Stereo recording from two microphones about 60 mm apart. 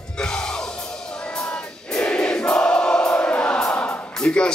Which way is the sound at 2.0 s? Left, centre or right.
Centre.